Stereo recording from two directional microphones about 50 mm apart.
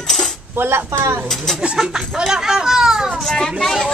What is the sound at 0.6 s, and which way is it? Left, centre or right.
Speech, right.